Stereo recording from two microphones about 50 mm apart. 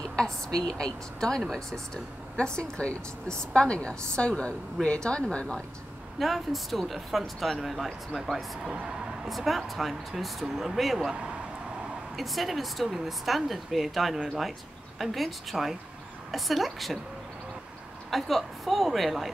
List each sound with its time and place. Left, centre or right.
0.0 s a woman's voice: centre
6.1 s speech: centre
12.2 s speech: centre
18.1 s speech: centre